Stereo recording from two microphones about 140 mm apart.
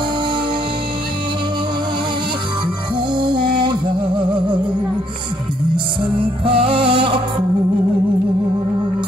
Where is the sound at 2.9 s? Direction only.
35° right (ahead or behind).